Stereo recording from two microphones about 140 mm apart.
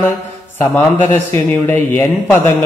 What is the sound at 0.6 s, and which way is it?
Speech, 15° left (ahead or behind).